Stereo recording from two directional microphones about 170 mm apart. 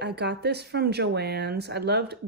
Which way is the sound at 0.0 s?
80° right.